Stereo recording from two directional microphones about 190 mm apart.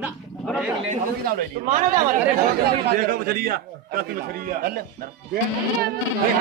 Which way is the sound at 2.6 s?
55° right (ahead or behind).